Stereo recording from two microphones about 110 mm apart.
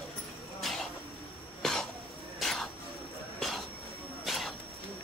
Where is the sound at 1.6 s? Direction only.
5° left (ahead or behind).